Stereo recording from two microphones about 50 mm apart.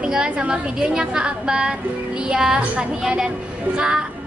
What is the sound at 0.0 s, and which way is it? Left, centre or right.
A woman's voice, centre.